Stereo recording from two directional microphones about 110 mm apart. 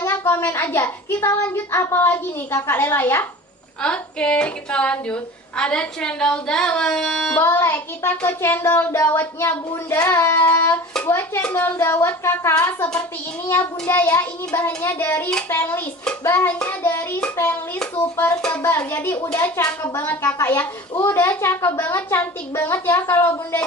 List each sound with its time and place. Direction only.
0.0 s a sound: 20° left (ahead or behind)
0.5 s child singing: 20° left (ahead or behind)
3.8 s a woman's voice: 10° left (ahead or behind)
7.3 s child singing: 20° left (ahead or behind)
14.8 s a woman's voice: 20° left (ahead or behind)
15.5 s child singing: 20° left (ahead or behind)